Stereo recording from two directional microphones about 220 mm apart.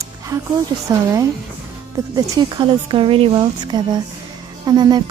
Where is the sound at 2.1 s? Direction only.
20° right (ahead or behind).